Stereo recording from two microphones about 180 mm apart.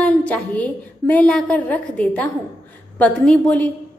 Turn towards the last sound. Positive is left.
turn(degrees=5)  # may be behind; listen again after turning